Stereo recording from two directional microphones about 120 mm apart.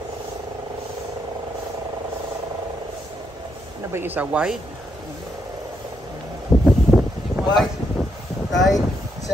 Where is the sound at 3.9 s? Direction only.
15° right (ahead or behind).